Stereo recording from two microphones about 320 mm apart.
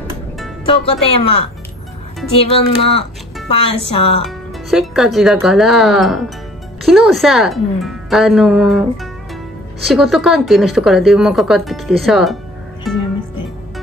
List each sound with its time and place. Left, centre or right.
0.7 s speech: centre
2.5 s speech: centre
4.2 s a woman's voice: centre
12.9 s music: centre